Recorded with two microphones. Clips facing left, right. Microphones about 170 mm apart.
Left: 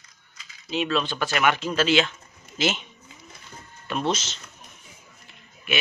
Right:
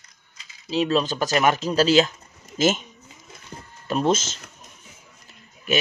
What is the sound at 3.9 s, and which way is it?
Speech, 45° right (ahead or behind).